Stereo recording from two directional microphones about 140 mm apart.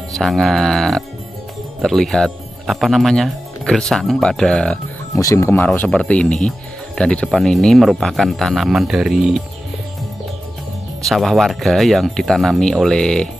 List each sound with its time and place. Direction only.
0.1 s speech: centre (ahead or behind)
5.1 s speech: 20° left (ahead or behind)
5.7 s speech: 5° left (ahead or behind)
11.1 s speech: centre (ahead or behind)